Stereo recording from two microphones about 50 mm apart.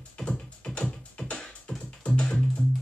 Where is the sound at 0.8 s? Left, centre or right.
Left.